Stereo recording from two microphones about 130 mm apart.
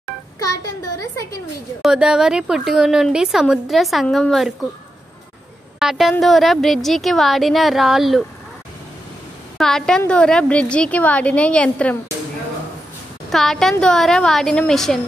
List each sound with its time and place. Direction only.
0.4 s speech: 25° left (ahead or behind)
1.8 s speech: 5° right (ahead or behind)
5.8 s speech: 5° right (ahead or behind)
9.6 s a woman's voice: 5° left (ahead or behind)
13.3 s speech: centre (ahead or behind)